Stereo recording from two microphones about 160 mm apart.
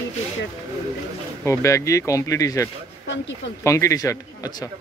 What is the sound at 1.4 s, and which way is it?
Speech, 20° left (ahead or behind).